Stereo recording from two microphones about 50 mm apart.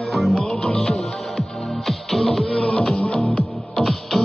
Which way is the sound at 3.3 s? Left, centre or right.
Centre.